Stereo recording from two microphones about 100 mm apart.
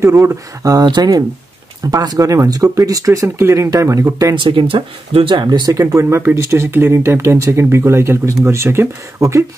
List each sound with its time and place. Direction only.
0.0 s speech: 25° right (ahead or behind)
4.4 s speech: 60° right (ahead or behind)
5.7 s speech: 30° right (ahead or behind)